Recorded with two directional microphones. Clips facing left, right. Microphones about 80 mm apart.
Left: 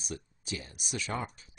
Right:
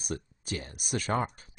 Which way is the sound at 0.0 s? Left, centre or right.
Right.